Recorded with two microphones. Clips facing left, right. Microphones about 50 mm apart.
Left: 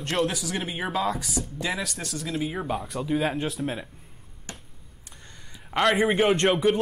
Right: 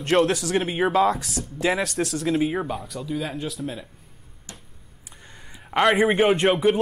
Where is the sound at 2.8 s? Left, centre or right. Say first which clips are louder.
Left 3 dB; left.